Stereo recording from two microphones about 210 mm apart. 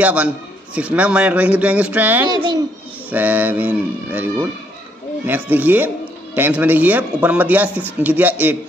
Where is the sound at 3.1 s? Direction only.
10° right (ahead or behind).